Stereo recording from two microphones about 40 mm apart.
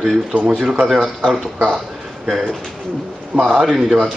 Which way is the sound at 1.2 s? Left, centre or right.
Right.